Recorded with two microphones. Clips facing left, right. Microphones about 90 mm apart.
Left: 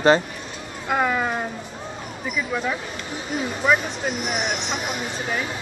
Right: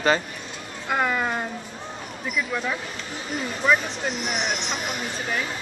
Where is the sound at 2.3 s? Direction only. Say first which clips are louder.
Left 2 dB; 5° left (ahead or behind).